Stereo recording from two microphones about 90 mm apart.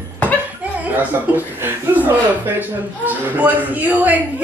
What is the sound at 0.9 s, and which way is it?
Speech, 20° right (ahead or behind).